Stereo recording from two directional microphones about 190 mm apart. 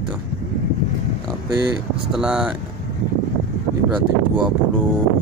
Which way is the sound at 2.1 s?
5° right (ahead or behind).